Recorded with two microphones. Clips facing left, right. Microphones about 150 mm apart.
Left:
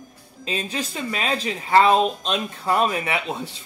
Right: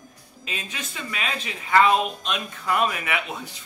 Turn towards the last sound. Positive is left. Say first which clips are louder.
# left 3 dB
turn(degrees=30)  # may be behind; listen again after turning